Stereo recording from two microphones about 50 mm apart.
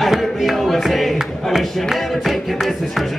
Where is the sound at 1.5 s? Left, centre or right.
Centre.